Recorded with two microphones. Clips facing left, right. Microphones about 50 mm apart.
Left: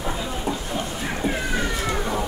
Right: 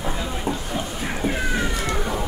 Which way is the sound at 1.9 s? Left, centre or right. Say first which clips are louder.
Left 1 dB; centre.